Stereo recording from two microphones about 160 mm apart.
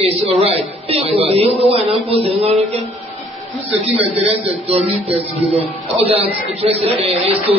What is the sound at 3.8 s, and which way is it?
A woman's voice, 40° right (ahead or behind).